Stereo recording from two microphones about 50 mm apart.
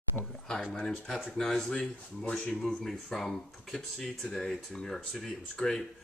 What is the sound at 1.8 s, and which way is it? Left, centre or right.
Speech, left.